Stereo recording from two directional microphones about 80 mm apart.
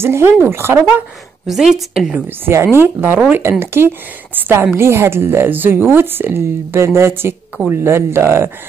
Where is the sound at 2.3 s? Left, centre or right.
Right.